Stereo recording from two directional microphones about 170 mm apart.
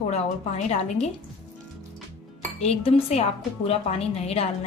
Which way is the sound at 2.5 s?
35° left (ahead or behind).